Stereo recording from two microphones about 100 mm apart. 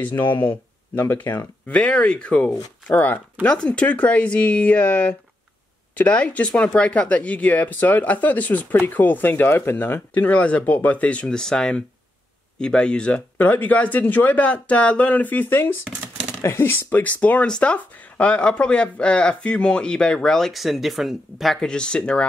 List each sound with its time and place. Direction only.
0.0 s speech: 20° left (ahead or behind)